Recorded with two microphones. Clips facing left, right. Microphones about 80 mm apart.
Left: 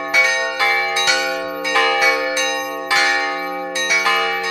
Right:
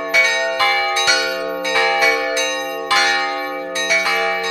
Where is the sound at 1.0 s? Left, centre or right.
Centre.